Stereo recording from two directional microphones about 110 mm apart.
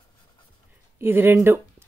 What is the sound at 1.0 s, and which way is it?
Speech, 20° right (ahead or behind).